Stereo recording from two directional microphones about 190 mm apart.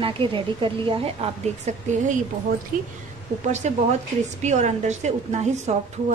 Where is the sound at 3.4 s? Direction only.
40° right (ahead or behind).